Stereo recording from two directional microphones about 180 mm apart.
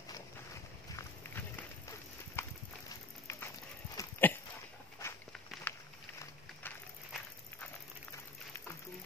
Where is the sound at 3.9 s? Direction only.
10° left (ahead or behind).